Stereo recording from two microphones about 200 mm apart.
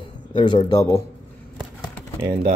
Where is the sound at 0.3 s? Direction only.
25° left (ahead or behind).